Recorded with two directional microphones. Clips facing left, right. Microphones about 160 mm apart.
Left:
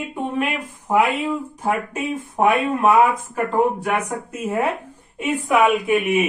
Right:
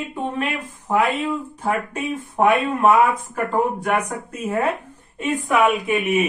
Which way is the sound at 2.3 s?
10° left (ahead or behind).